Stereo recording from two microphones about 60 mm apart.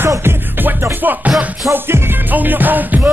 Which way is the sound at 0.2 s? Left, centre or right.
Right.